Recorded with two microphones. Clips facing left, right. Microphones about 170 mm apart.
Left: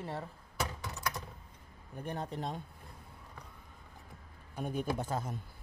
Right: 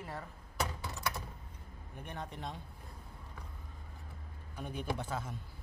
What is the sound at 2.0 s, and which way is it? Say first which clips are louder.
Speech: left 5 dB; 35° left (ahead or behind).